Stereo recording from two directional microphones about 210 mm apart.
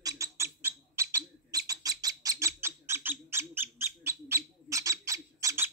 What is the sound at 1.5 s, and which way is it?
Bird, 15° right (ahead or behind).